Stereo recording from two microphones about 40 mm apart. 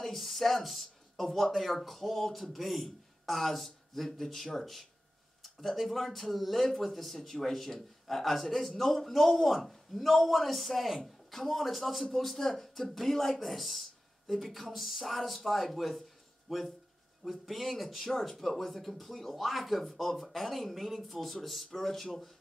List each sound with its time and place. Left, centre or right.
0.0 s speech: centre